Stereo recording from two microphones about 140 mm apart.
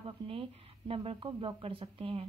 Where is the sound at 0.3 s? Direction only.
40° right (ahead or behind).